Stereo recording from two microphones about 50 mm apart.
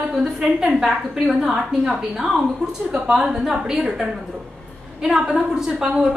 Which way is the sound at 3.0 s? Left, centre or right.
Right.